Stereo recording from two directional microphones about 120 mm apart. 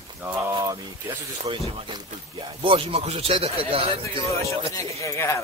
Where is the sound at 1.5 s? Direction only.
45° right (ahead or behind).